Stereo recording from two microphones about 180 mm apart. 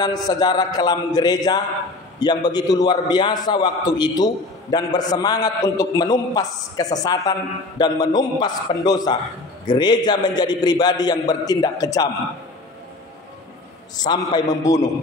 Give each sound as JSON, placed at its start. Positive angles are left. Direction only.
{"t": 0.0, "sound": "a man's voice", "side_deg": 20}
{"t": 13.9, "sound": "a man's voice", "side_deg": 25}